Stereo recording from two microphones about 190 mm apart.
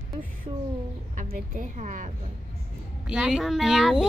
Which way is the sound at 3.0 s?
5° right (ahead or behind).